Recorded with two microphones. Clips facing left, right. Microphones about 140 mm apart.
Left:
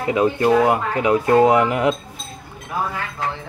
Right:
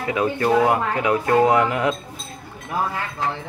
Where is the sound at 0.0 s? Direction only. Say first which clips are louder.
Left 4 dB; 25° left (ahead or behind).